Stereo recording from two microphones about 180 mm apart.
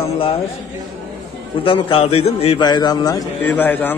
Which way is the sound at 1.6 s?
30° left (ahead or behind).